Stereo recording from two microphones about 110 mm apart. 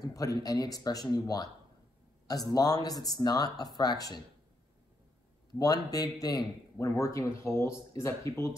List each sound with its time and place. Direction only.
0.0 s speech: 30° left (ahead or behind)
5.6 s a man's voice: 35° left (ahead or behind)